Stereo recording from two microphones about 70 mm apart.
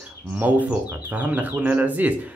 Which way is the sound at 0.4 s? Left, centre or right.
Right.